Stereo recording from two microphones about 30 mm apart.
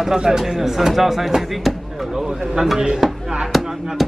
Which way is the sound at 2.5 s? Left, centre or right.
Centre.